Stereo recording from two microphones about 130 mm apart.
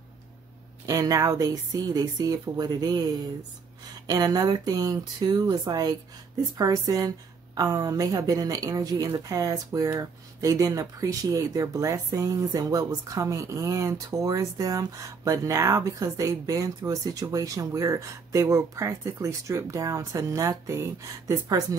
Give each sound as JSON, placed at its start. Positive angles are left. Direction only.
{"t": 0.8, "sound": "a woman's voice", "side_deg": -30}